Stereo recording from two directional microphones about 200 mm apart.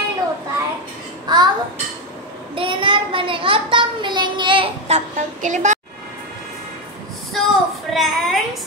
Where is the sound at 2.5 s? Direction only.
25° right (ahead or behind).